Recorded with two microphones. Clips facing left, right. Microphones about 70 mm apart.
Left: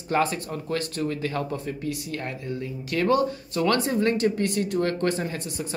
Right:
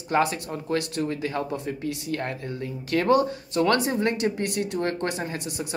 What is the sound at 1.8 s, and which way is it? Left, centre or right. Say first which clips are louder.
Speech: right 2 dB; right.